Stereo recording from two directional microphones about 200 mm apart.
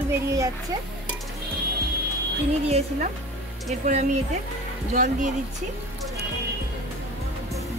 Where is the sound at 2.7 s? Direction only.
35° right (ahead or behind).